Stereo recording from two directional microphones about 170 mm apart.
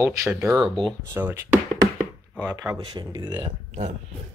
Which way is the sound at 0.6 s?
Centre (ahead or behind).